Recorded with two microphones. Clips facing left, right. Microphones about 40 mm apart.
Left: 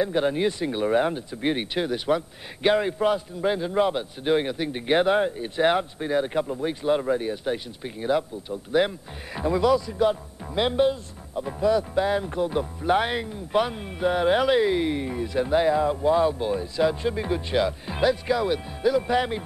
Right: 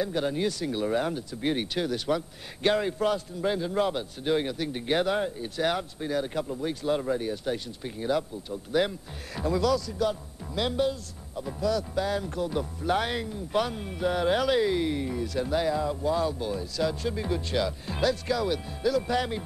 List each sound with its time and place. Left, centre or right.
0.0 s speech: left